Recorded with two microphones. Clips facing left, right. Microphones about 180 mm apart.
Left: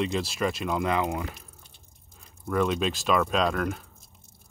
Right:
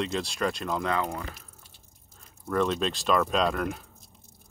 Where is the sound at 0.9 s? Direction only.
15° left (ahead or behind).